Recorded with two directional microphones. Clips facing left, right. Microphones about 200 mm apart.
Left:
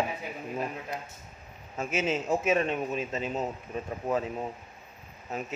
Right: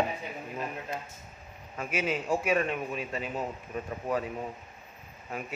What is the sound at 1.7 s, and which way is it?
A man's voice, 25° left (ahead or behind).